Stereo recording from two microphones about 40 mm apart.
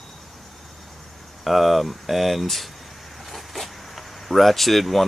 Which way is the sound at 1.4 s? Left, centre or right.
Centre.